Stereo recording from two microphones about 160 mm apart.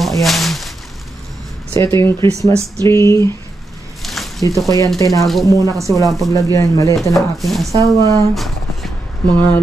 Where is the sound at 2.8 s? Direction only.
20° left (ahead or behind).